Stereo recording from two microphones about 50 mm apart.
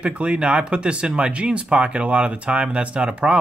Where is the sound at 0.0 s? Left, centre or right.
Right.